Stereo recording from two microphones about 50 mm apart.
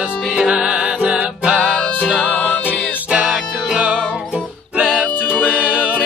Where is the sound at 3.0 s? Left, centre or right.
Right.